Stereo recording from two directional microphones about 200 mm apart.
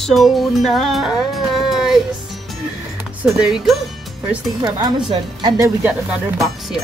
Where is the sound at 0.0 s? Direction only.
Centre (ahead or behind).